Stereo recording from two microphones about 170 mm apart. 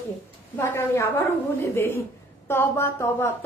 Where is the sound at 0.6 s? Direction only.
15° left (ahead or behind).